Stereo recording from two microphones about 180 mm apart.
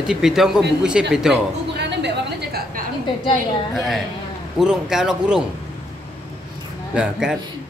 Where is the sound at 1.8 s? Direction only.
70° right (ahead or behind).